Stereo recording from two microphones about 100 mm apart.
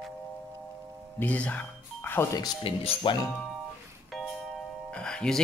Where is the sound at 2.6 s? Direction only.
65° left (ahead or behind).